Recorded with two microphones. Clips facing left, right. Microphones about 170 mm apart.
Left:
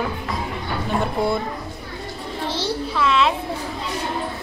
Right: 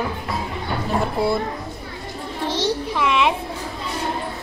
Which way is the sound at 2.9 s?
15° right (ahead or behind).